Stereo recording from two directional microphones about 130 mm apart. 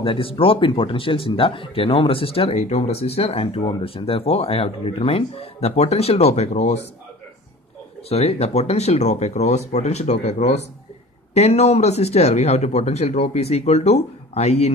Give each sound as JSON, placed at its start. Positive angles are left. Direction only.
{"t": 0.0, "sound": "speech", "side_deg": 45}
{"t": 8.1, "sound": "speech", "side_deg": 55}